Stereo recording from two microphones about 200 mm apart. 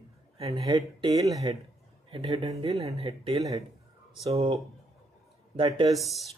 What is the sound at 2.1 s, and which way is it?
Speech, 30° right (ahead or behind).